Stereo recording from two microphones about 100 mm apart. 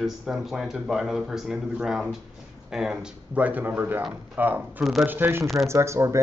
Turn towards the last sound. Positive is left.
turn(degrees=-30)  # may be behind; listen again after turning